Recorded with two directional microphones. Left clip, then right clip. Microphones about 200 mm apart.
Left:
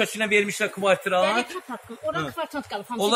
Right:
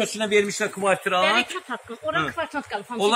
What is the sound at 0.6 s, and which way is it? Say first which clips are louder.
Speech: even; 35° left (ahead or behind).